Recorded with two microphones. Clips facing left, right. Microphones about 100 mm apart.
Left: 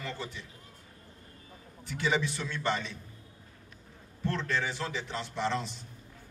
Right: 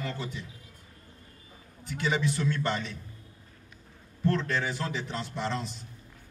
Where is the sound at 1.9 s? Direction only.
20° left (ahead or behind).